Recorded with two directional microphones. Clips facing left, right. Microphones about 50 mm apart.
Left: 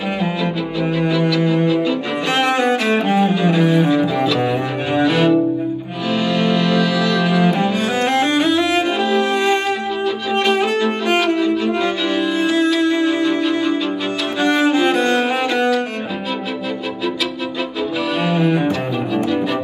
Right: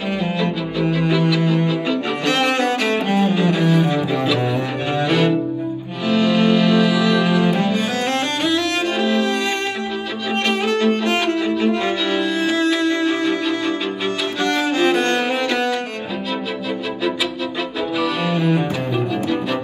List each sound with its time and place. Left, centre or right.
1.4 s music: centre
2.9 s cello: left
3.9 s music: centre
5.0 s cello: centre
6.2 s music: centre
7.3 s cello: centre
8.5 s music: centre
12.8 s music: centre
14.4 s music: centre
18.0 s music: centre
18.9 s music: centre